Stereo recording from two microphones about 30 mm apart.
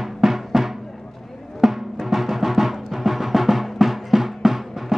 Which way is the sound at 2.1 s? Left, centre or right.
Centre.